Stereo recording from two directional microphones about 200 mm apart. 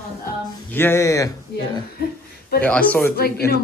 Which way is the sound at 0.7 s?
10° left (ahead or behind).